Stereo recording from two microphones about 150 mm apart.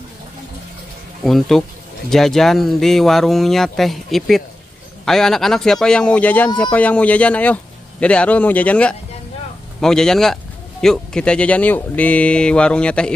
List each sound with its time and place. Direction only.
1.2 s speech: centre (ahead or behind)